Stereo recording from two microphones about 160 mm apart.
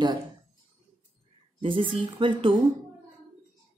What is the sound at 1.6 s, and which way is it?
Speech, 30° right (ahead or behind).